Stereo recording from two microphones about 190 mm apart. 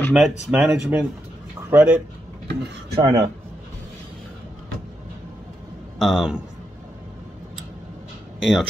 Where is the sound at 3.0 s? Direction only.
25° right (ahead or behind).